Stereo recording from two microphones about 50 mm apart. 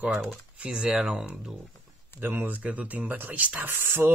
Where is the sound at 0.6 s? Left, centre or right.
Right.